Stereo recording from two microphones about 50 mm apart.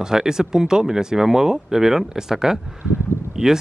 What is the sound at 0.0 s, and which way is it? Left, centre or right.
Speech, centre.